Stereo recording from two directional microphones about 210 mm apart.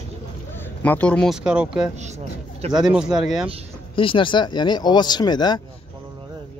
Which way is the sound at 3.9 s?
25° left (ahead or behind).